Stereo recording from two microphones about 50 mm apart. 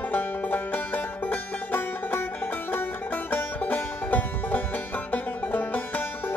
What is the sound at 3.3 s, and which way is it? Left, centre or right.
Music, left.